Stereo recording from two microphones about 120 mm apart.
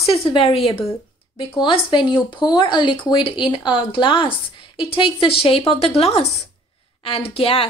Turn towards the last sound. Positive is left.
turn(degrees=50)  # may be behind; listen again after turning